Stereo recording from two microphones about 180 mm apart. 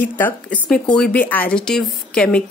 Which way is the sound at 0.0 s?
10° left (ahead or behind).